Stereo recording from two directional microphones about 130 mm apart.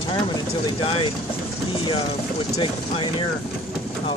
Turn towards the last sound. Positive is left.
turn(degrees=40)  # may be behind; listen again after turning